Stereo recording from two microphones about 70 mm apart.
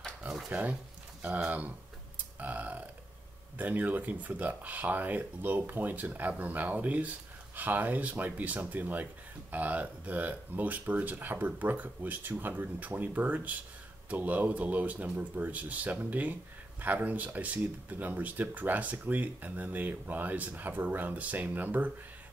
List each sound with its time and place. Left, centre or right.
0.5 s speech: right
2.1 s a sound: right
3.5 s speech: right